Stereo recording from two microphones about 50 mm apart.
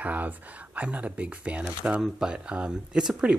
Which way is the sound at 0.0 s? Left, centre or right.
Right.